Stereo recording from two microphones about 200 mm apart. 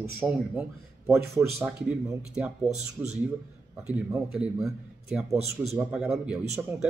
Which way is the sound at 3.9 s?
10° right (ahead or behind).